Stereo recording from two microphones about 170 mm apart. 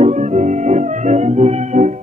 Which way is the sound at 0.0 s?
45° right (ahead or behind).